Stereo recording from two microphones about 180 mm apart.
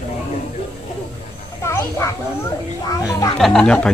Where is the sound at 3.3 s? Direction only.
Centre (ahead or behind).